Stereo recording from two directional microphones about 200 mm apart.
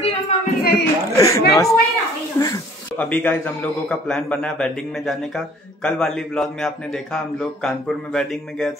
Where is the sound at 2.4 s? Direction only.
10° left (ahead or behind).